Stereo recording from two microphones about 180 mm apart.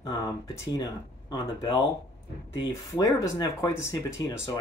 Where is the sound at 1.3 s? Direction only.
25° left (ahead or behind).